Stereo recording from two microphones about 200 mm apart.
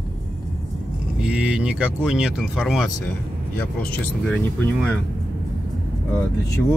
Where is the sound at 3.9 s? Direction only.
5° left (ahead or behind).